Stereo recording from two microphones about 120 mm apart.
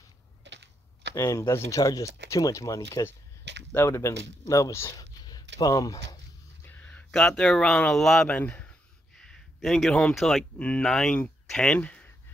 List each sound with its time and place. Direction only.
1.1 s speech: 25° left (ahead or behind)
5.2 s a sound: 30° left (ahead or behind)
6.6 s speech: 15° left (ahead or behind)